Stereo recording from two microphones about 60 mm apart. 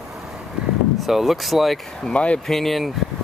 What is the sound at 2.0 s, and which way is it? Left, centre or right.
Speech, centre.